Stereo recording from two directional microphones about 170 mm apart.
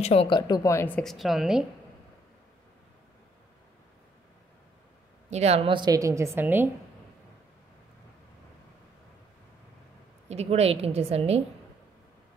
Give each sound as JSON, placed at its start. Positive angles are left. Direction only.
{"t": 0.0, "sound": "speech", "side_deg": 35}
{"t": 0.5, "sound": "a woman's voice", "side_deg": 15}
{"t": 5.3, "sound": "a woman's voice", "side_deg": -40}
{"t": 10.2, "sound": "a woman's voice", "side_deg": -40}